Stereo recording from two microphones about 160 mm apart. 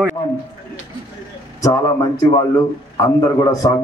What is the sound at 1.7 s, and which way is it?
Speech, 25° left (ahead or behind).